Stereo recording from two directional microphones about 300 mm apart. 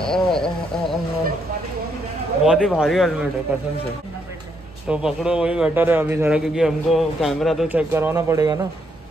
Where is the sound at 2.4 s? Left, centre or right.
Centre.